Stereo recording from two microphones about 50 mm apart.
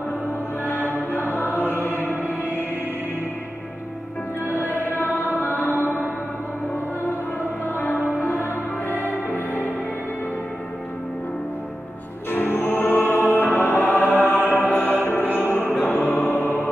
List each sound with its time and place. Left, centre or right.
1.1 s music: left
4.7 s music: left
7.6 s music: left
12.3 s music: left